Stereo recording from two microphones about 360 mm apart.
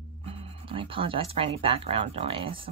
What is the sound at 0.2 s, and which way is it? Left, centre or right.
Speech, centre.